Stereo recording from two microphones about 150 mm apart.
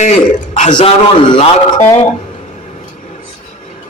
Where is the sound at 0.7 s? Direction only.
35° left (ahead or behind).